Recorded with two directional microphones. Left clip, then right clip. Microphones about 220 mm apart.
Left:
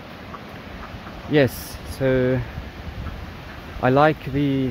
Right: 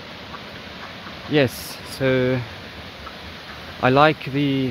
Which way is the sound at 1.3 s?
Centre (ahead or behind).